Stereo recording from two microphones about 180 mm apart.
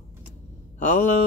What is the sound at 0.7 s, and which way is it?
Mantra, 40° left (ahead or behind).